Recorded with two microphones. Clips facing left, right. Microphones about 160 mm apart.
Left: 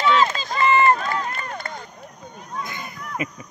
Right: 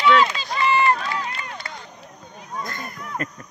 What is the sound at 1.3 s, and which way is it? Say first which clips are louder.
Run: left 3 dB; 50° left (ahead or behind).